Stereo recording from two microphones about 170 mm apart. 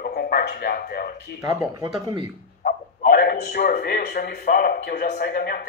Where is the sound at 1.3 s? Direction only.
15° right (ahead or behind).